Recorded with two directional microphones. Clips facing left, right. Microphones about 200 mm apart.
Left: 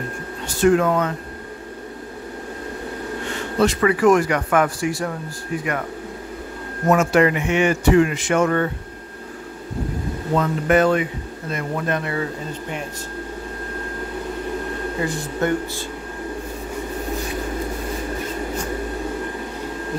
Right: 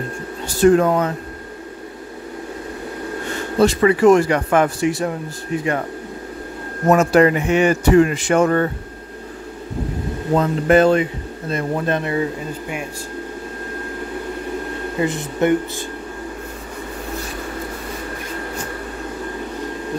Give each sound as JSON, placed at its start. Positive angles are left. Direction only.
{"t": 0.5, "sound": "a man's voice", "side_deg": -35}
{"t": 3.5, "sound": "speech", "side_deg": -30}
{"t": 6.9, "sound": "a man's voice", "side_deg": -35}
{"t": 10.3, "sound": "speech", "side_deg": -30}
{"t": 15.0, "sound": "speech", "side_deg": -20}